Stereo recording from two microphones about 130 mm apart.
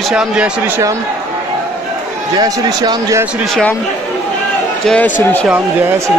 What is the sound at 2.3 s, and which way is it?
Speech, 30° right (ahead or behind).